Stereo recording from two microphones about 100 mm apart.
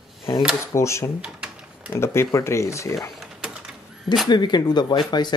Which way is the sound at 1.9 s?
25° left (ahead or behind).